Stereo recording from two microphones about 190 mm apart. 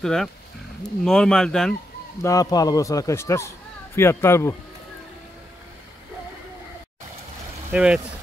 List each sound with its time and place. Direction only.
0.0 s speech: centre (ahead or behind)
2.2 s a man's voice: 20° left (ahead or behind)
7.7 s speech: 5° right (ahead or behind)